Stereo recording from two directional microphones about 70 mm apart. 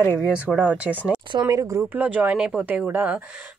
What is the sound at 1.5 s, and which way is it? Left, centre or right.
Speech, right.